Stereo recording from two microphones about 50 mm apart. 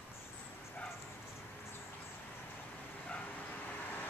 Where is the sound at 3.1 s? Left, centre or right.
Left.